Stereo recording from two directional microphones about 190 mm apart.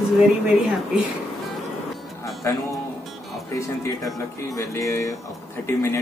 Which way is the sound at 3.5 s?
15° left (ahead or behind).